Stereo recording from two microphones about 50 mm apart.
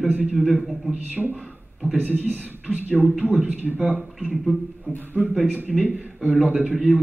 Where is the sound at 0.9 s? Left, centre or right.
Right.